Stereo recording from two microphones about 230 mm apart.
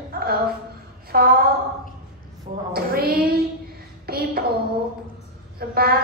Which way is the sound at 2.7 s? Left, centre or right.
Right.